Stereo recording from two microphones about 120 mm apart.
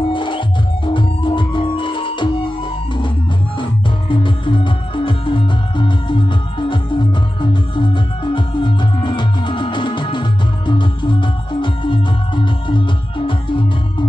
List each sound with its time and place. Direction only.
0.1 s music: 45° left (ahead or behind)
4.1 s music: 45° left (ahead or behind)